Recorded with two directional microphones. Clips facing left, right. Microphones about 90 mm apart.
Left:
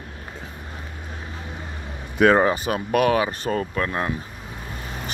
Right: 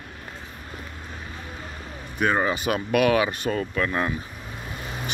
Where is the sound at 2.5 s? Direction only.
35° left (ahead or behind).